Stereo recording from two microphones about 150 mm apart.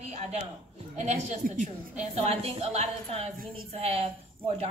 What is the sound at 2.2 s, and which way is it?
A woman's voice, 45° right (ahead or behind).